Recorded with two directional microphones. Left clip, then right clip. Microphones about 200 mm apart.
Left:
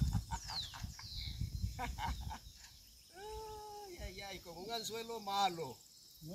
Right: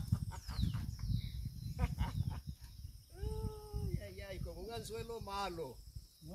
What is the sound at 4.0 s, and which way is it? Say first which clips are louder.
Cricket: left 1 dB; 25° left (ahead or behind).